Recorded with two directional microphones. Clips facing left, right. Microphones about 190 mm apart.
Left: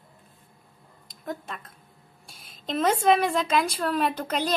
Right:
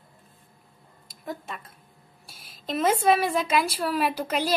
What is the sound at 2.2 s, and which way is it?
A woman's voice, centre (ahead or behind).